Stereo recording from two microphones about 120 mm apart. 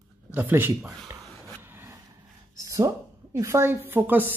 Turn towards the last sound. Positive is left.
turn(degrees=-15)  # may be behind; listen again after turning